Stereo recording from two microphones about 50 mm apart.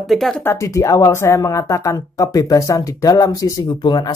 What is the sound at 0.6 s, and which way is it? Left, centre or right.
Speech, left.